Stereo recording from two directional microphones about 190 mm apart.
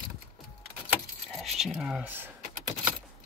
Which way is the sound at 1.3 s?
Centre (ahead or behind).